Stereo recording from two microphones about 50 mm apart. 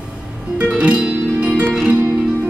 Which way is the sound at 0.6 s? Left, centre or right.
Right.